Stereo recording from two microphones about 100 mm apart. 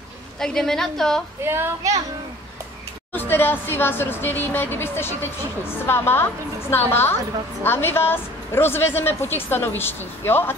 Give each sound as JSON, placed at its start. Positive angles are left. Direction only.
{"t": 0.4, "sound": "a woman's voice", "side_deg": 5}
{"t": 1.4, "sound": "a child's voice", "side_deg": -25}
{"t": 3.1, "sound": "a woman's voice", "side_deg": 20}